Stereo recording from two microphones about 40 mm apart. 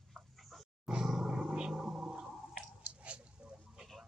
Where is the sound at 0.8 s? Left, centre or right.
Centre.